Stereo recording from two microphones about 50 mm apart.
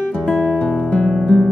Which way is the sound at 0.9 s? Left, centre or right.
Centre.